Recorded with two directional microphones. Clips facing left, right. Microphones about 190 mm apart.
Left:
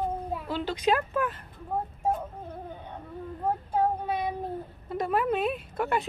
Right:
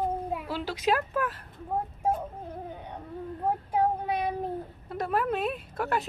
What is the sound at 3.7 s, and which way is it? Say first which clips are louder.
Child singing: even; 15° right (ahead or behind).